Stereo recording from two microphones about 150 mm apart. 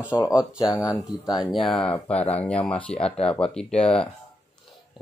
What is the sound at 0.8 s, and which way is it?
Speech, 25° left (ahead or behind).